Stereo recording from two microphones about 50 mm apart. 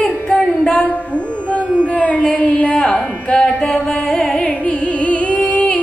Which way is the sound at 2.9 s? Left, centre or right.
Left.